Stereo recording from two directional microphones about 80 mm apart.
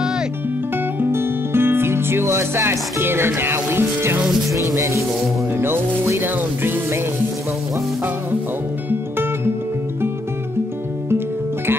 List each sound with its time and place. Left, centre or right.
0.9 s music: right
4.7 s speech: right
5.6 s speech: right
11.1 s music: right